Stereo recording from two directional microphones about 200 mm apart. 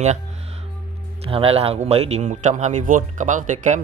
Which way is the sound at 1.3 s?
30° right (ahead or behind).